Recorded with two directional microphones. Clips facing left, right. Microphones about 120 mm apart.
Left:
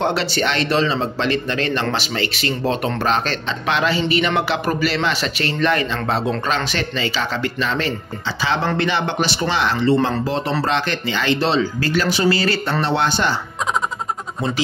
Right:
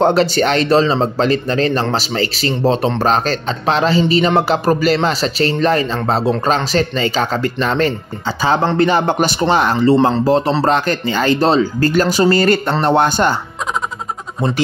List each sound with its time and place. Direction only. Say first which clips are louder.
0.0 s speech: right 7 dB; 45° right (ahead or behind)